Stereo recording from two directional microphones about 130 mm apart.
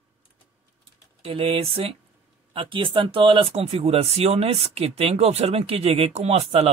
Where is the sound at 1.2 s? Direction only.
45° right (ahead or behind).